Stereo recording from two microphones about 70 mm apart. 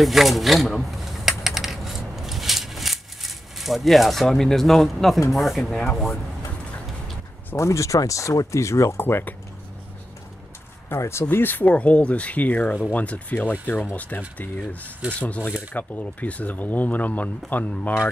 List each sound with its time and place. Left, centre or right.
0.0 s typing: centre
5.3 s speech: centre
7.5 s speech: left
11.0 s speech: left
11.2 s speech: left